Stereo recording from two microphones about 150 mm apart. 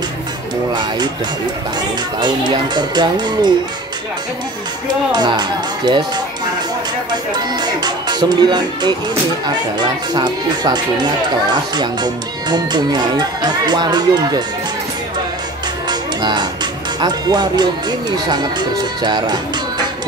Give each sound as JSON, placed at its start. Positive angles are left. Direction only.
{"t": 0.7, "sound": "speech", "side_deg": -30}
{"t": 2.1, "sound": "speech", "side_deg": -30}
{"t": 5.1, "sound": "speech", "side_deg": -30}
{"t": 7.3, "sound": "speech", "side_deg": -30}
{"t": 15.9, "sound": "music", "side_deg": -30}
{"t": 17.0, "sound": "speech", "side_deg": -30}